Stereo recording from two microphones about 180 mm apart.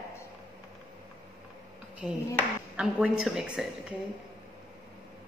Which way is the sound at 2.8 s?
5° right (ahead or behind).